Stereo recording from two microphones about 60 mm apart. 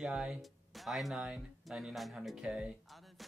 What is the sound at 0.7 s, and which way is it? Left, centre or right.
Speech, centre.